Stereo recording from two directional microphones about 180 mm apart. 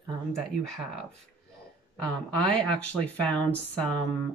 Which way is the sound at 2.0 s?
5° left (ahead or behind).